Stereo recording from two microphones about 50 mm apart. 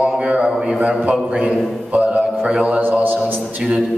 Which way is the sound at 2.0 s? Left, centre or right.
Centre.